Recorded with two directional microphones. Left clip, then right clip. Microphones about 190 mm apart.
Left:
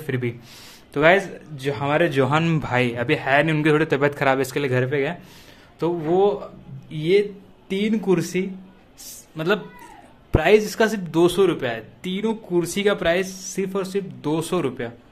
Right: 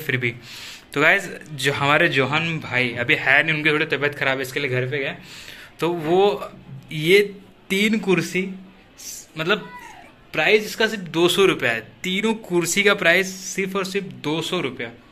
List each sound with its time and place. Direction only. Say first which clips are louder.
0.0 s speech: right 4 dB; 25° left (ahead or behind)
0.9 s speech: left 1 dB; 15° left (ahead or behind)
2.0 s speech: even; 25° left (ahead or behind)
2.4 s a man's voice: even; 40° left (ahead or behind)
6.0 s speech: right 1 dB; 10° left (ahead or behind)
10.3 s a man's voice: left 1 dB; 40° left (ahead or behind)
11.1 s speech: right 1 dB; 20° left (ahead or behind)
14.4 s a man's voice: left 1 dB; 35° left (ahead or behind)